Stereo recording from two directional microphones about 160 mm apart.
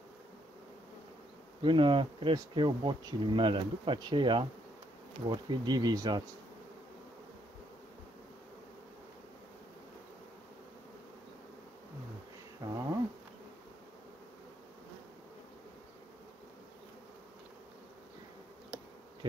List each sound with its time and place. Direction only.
1.6 s speech: 30° right (ahead or behind)
12.6 s bee: 25° right (ahead or behind)